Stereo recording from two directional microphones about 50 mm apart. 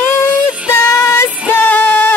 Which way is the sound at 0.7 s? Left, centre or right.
Left.